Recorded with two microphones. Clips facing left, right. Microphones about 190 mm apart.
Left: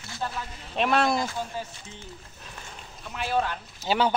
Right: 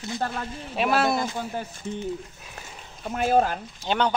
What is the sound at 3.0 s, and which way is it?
Speech, 45° right (ahead or behind).